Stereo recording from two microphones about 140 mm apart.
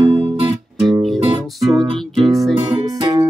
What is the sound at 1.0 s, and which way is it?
Music, centre (ahead or behind).